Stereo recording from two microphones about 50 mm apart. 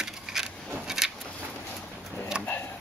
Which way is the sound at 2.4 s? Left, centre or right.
Left.